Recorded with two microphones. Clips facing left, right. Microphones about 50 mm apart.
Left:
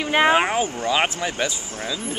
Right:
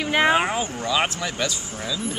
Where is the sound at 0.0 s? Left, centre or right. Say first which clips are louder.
Left 2 dB; centre.